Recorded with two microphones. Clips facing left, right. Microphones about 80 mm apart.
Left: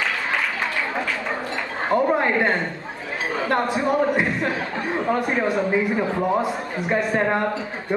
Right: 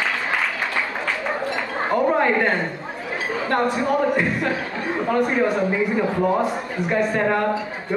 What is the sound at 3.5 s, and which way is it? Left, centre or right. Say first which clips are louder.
Speech: right 1 dB; left.